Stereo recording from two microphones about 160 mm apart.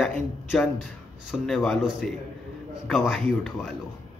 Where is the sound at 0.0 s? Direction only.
Centre (ahead or behind).